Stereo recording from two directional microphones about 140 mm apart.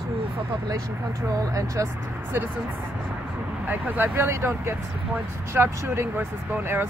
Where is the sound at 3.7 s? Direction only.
15° right (ahead or behind).